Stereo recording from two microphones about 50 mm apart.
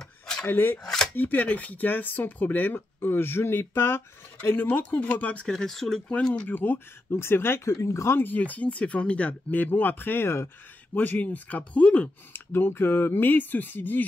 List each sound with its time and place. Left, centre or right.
0.5 s speech: left
3.0 s speech: left
4.5 s speech: left
5.5 s speech: centre
6.5 s speech: left
7.1 s speech: left
7.6 s speech: left
8.2 s speech: left
11.0 s speech: left
12.3 s speech: left